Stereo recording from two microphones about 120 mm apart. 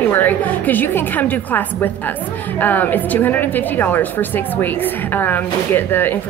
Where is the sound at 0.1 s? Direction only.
15° left (ahead or behind).